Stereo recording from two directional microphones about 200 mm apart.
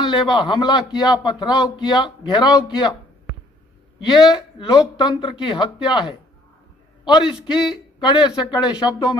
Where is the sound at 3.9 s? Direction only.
20° left (ahead or behind).